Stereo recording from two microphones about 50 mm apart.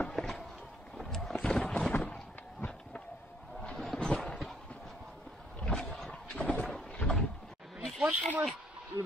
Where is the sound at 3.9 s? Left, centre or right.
Centre.